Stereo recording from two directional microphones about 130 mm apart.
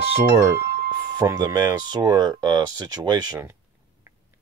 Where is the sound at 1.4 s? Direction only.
25° right (ahead or behind).